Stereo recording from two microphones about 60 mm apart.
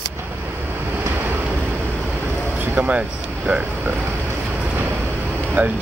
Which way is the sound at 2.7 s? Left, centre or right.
Right.